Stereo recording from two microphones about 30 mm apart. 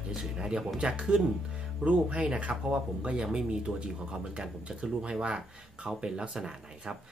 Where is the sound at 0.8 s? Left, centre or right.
Right.